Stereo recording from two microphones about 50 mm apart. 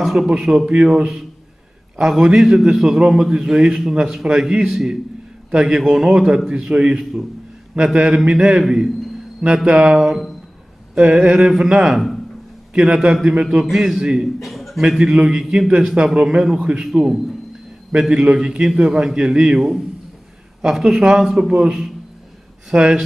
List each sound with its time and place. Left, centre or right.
0.0 s a sound: centre
0.3 s a man's voice: centre
8.3 s a man's voice: centre
11.3 s a man's voice: centre
14.4 s a man's voice: centre